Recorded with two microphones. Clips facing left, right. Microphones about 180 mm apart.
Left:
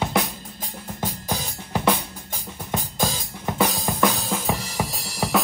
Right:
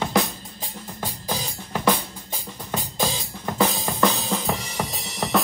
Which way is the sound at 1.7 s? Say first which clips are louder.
Even; 15° left (ahead or behind).